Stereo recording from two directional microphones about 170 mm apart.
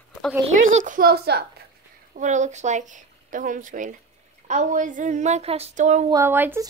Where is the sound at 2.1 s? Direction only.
45° right (ahead or behind).